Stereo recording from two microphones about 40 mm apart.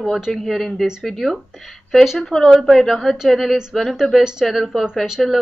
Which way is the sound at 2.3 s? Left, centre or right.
Centre.